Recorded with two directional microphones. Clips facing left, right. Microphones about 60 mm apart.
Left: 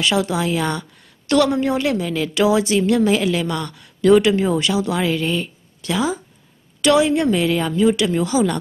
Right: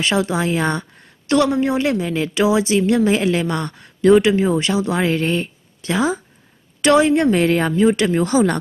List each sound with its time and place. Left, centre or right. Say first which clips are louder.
0.0 s a woman's voice: even; right